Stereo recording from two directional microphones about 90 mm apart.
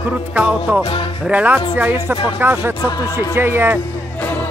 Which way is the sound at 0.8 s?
90° left.